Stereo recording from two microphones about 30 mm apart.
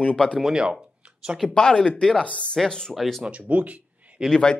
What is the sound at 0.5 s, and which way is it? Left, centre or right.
Speech, right.